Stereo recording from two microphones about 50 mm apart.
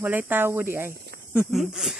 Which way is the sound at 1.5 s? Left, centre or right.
Centre.